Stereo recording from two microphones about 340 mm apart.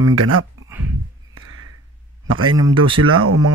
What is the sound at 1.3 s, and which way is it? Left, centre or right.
Music, right.